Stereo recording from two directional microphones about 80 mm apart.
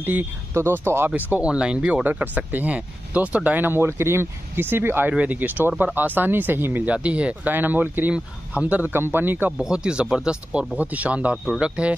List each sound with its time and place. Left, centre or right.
0.0 s speech: right
1.1 s speech: centre
6.9 s speech: centre
9.6 s speech: centre